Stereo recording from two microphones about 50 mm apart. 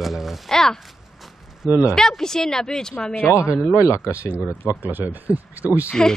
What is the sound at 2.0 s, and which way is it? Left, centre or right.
Speech, centre.